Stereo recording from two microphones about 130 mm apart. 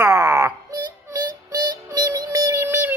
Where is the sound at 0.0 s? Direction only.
25° right (ahead or behind).